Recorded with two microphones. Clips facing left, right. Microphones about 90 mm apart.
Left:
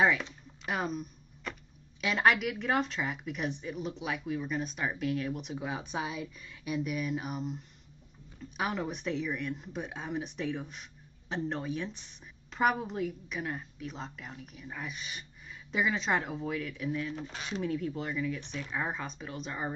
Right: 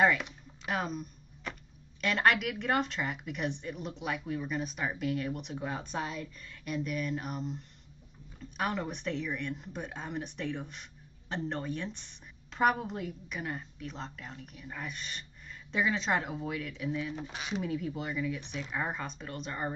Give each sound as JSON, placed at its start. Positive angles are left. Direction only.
{"t": 0.7, "sound": "speech", "side_deg": 0}